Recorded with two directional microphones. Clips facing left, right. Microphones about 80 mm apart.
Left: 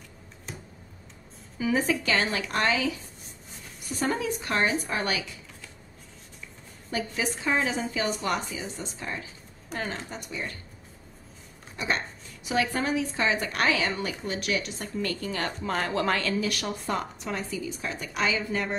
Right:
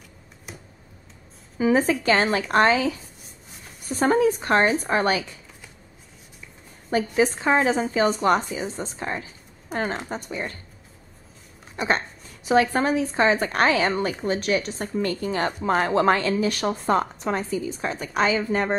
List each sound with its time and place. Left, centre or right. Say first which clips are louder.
0.5 s tick-tock: even; centre
1.6 s a woman's voice: right 6 dB; right
6.9 s a woman's voice: right 9 dB; right
11.7 s a sound: right 6 dB; right
12.4 s a woman's voice: right 7 dB; right